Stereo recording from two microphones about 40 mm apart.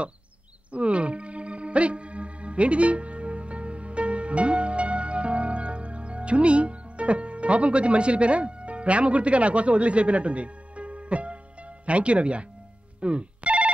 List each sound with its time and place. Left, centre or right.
0.7 s music: right
11.8 s speech: right
13.0 s telephone bell ringing: right